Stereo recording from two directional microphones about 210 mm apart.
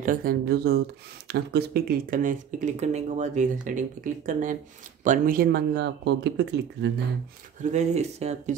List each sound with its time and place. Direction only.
0.0 s speech: 40° right (ahead or behind)
7.6 s speech: 35° right (ahead or behind)